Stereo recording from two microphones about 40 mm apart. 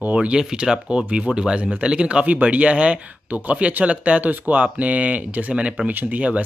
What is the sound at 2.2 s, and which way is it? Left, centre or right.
Speech, right.